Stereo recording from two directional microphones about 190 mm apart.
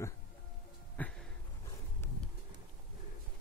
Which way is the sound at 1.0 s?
5° left (ahead or behind).